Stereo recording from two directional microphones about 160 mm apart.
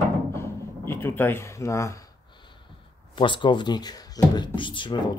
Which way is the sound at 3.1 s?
30° left (ahead or behind).